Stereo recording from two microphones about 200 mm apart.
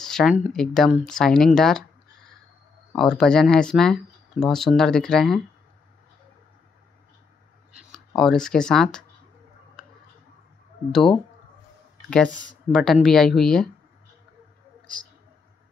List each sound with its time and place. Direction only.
0.0 s speech: centre (ahead or behind)
7.7 s speech: centre (ahead or behind)
10.9 s speech: centre (ahead or behind)
12.7 s speech: centre (ahead or behind)